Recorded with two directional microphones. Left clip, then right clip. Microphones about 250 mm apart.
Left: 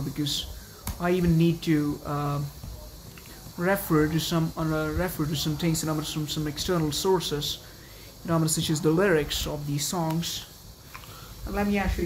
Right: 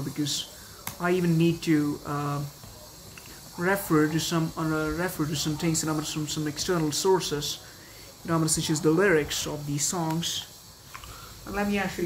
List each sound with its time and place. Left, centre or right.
0.2 s speech: centre
3.5 s speech: centre
11.5 s speech: centre